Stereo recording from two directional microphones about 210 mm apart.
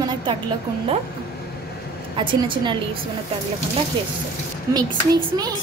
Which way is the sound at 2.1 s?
25° right (ahead or behind).